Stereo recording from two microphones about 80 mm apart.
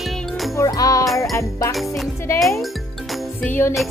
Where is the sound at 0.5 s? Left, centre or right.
Left.